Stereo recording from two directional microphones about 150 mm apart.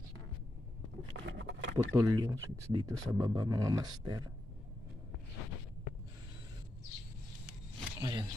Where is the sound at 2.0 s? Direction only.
25° right (ahead or behind).